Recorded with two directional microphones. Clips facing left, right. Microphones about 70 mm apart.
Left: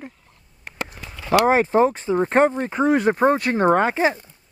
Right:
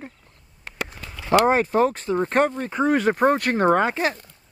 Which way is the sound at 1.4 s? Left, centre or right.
Centre.